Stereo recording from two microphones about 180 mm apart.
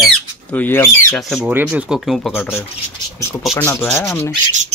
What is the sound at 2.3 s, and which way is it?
Rub, 10° left (ahead or behind).